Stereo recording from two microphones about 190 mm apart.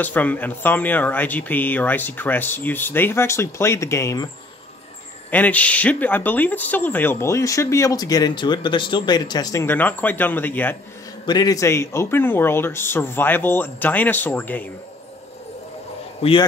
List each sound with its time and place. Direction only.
0.0 s speech: 10° left (ahead or behind)
5.3 s speech: 10° left (ahead or behind)
11.2 s speech: 20° left (ahead or behind)
16.2 s a man's voice: 30° left (ahead or behind)